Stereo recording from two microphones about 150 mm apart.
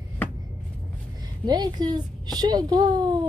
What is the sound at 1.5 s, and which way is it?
A woman's voice, 25° right (ahead or behind).